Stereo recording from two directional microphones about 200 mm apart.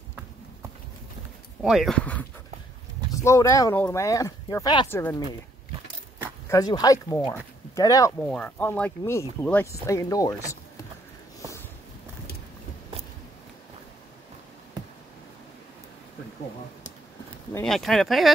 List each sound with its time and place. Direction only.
1.6 s speech: centre (ahead or behind); by 5.0 s 20° left (ahead or behind)
6.5 s speech: 20° left (ahead or behind)
8.3 s speech: 5° left (ahead or behind)
17.6 s speech: centre (ahead or behind)